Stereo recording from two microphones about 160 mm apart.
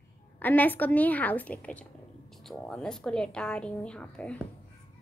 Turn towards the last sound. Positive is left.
turn(degrees=5)  # may be behind; listen again after turning